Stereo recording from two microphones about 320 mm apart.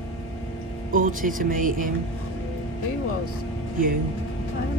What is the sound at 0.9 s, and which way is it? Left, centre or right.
Speech, right.